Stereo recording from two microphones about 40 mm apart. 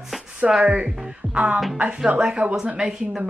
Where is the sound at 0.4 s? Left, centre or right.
Centre.